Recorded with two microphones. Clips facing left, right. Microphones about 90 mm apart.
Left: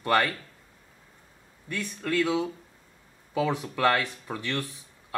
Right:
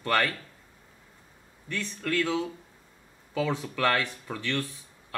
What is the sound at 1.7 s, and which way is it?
Speech, 15° left (ahead or behind).